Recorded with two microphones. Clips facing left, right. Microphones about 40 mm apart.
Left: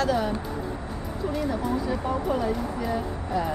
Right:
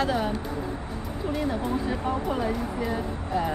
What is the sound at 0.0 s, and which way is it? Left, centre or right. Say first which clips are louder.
Speech: left 1 dB; right.